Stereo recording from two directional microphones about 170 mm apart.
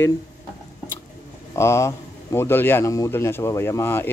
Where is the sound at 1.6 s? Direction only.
15° left (ahead or behind).